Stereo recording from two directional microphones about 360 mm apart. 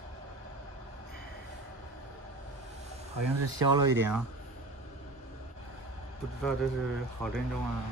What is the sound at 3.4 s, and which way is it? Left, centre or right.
Speech, right.